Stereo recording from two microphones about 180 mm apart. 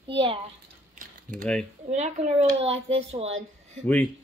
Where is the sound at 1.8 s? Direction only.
40° right (ahead or behind).